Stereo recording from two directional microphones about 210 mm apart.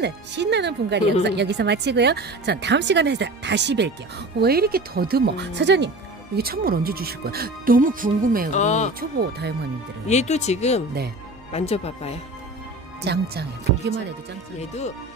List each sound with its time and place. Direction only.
0.0 s speech: 55° right (ahead or behind)
8.5 s speech: 35° left (ahead or behind)
10.0 s speech: 30° left (ahead or behind)
13.0 s speech: 50° right (ahead or behind)
14.6 s speech: 30° left (ahead or behind)